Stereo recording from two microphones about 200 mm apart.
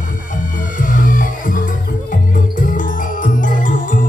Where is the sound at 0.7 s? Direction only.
40° left (ahead or behind).